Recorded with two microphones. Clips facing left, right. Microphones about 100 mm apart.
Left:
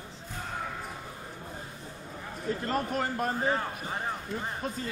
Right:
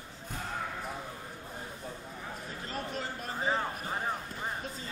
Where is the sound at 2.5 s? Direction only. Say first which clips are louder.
Left 11 dB; 55° left (ahead or behind).